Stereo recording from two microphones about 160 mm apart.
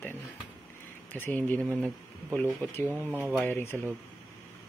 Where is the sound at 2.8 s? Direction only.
15° right (ahead or behind).